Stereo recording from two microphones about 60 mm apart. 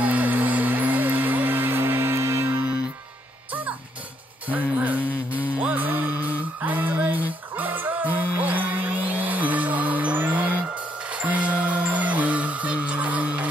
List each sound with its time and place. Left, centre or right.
0.0 s music: right
4.5 s music: right